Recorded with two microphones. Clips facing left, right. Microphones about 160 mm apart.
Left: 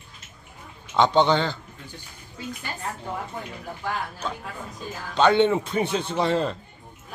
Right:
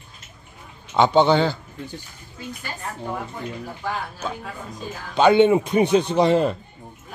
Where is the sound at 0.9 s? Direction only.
5° right (ahead or behind).